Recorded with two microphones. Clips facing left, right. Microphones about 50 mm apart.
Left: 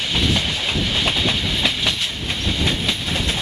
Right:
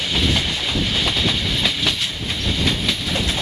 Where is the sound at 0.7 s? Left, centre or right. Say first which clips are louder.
Even; centre.